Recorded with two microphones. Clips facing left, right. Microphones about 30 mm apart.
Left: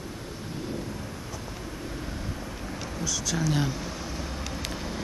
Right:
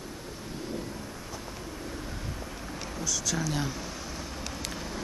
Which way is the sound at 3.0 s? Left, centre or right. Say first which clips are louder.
Left 2 dB; centre.